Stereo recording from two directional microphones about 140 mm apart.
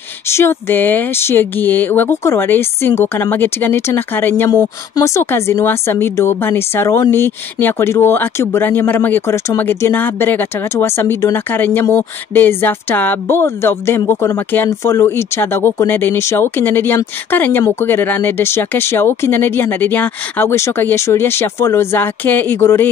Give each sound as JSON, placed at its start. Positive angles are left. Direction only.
{"t": 0.3, "sound": "speech", "side_deg": 15}